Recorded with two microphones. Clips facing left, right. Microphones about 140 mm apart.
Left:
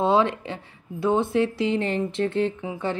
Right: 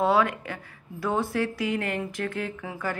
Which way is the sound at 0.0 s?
25° left (ahead or behind).